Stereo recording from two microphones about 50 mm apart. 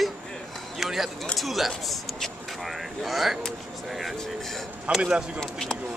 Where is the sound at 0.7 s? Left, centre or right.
Centre.